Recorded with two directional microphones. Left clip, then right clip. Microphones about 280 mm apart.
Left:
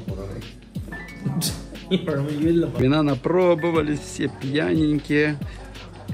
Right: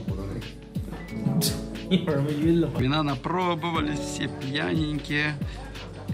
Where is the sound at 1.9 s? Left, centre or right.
Right.